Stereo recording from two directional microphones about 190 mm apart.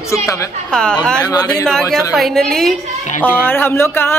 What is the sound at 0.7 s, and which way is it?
Speech, 5° left (ahead or behind).